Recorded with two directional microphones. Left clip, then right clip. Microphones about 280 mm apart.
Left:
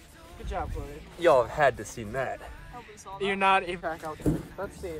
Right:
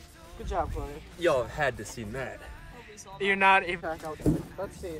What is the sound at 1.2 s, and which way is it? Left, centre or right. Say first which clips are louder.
Speech: left 5 dB; centre.